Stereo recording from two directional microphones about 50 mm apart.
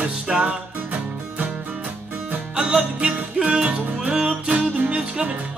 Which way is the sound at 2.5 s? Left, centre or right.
Centre.